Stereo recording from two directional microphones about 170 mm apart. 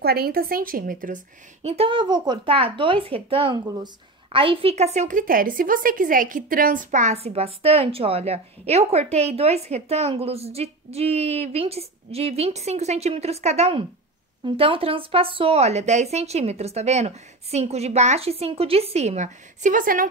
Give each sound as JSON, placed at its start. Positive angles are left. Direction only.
{"t": 0.0, "sound": "a woman's voice", "side_deg": -65}